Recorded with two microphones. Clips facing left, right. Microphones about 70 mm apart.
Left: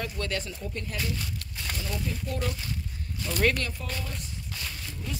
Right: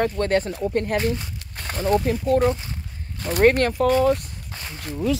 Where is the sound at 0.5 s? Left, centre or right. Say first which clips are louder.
Right 13 dB; right.